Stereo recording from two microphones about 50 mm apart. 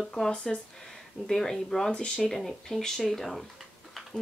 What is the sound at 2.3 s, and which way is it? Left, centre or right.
Speech, centre.